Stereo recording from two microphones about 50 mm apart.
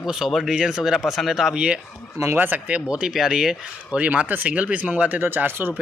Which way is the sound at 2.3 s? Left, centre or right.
Right.